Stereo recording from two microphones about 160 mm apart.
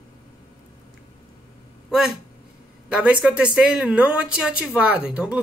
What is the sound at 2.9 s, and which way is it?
Speech, 5° right (ahead or behind).